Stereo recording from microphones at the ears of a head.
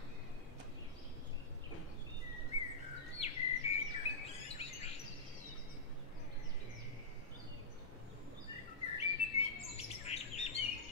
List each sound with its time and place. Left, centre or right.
2.6 s bird: left
8.5 s bird: left